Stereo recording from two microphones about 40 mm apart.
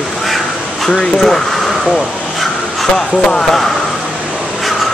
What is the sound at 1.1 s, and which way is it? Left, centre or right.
Speech, centre.